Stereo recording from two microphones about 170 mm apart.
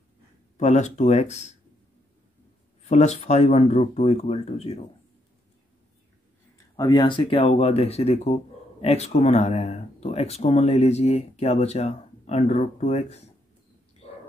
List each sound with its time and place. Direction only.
0.6 s speech: 45° left (ahead or behind)
2.8 s speech: 40° left (ahead or behind)
6.8 s speech: 25° left (ahead or behind)